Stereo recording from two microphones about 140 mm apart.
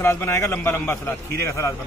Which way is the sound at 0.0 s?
20° left (ahead or behind).